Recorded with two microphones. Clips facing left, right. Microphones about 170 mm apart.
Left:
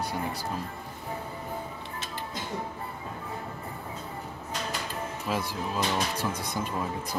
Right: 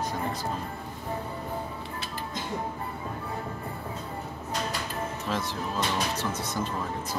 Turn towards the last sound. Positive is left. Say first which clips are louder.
# right 1 dB
turn(degrees=10)  # may be behind; listen again after turning